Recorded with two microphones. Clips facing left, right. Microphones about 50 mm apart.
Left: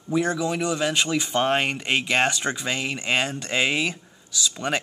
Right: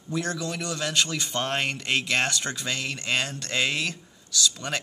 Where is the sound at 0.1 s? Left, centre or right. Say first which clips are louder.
Left 6 dB; centre.